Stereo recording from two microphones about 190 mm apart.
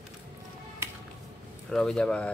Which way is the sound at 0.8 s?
15° right (ahead or behind).